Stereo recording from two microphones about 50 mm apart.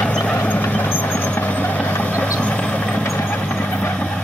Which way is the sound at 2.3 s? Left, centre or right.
Left.